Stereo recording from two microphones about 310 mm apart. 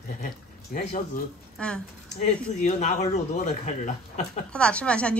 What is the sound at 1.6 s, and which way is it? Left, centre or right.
Speech, centre.